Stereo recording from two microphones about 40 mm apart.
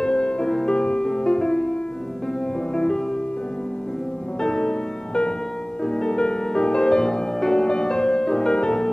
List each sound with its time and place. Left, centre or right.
0.0 s music: left
4.4 s music: centre